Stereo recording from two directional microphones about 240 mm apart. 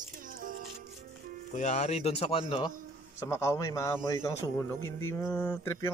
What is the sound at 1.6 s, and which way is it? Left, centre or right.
Speech, left.